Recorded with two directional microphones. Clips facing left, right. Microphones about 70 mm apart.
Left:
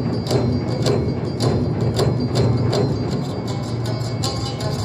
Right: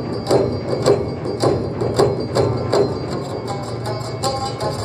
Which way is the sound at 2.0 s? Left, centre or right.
Right.